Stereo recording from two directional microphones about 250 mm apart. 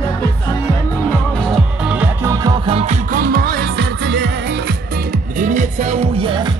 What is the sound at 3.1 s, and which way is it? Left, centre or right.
Music, right.